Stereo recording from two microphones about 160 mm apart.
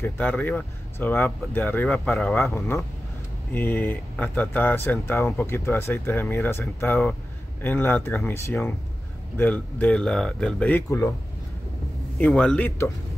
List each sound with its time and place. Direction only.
0.0 s speech: 10° left (ahead or behind)
10.7 s speech: 20° left (ahead or behind)
12.2 s speech: 5° left (ahead or behind)